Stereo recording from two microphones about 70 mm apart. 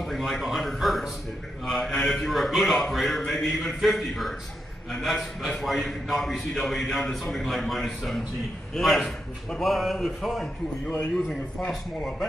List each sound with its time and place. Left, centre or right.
0.0 s a sound: centre
1.7 s a man's voice: centre
11.6 s speech: centre